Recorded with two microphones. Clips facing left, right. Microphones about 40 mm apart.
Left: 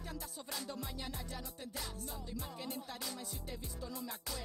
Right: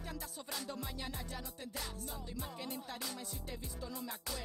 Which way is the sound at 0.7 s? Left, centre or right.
Centre.